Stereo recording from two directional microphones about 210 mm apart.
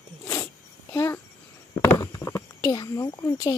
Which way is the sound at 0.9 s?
10° left (ahead or behind).